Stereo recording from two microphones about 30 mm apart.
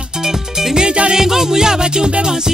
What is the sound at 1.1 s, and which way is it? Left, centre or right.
Music, centre.